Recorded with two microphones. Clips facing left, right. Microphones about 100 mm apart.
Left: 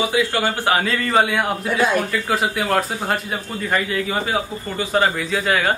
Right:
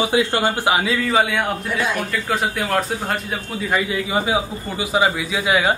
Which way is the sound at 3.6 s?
10° right (ahead or behind).